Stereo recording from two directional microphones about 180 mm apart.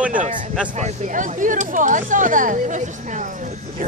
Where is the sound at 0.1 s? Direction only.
45° right (ahead or behind).